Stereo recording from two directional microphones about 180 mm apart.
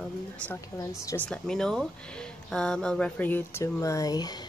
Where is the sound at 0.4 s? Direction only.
15° left (ahead or behind).